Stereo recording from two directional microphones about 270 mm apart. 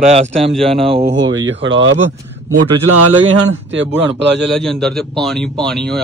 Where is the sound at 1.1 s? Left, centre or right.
Right.